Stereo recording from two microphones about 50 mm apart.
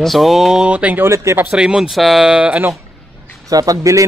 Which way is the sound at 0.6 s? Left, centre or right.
Right.